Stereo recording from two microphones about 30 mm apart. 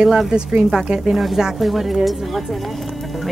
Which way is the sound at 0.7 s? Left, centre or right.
Right.